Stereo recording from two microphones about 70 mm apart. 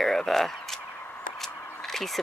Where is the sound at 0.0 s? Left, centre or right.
Centre.